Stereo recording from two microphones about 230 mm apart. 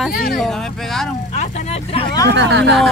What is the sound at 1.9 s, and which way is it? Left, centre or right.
Vehicle, left.